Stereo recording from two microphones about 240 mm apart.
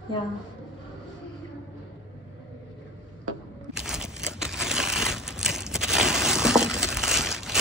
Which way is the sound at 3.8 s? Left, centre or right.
Centre.